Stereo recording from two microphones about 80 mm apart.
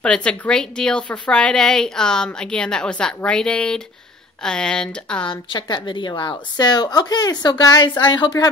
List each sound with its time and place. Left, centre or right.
0.0 s a woman's voice: centre
5.2 s a woman's voice: left